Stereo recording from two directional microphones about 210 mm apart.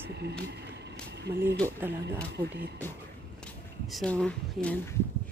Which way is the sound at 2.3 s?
50° right (ahead or behind).